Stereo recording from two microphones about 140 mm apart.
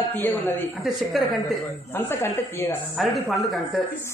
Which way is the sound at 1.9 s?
15° left (ahead or behind).